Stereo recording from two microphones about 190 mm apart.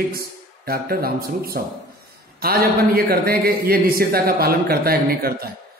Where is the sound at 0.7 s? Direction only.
50° right (ahead or behind).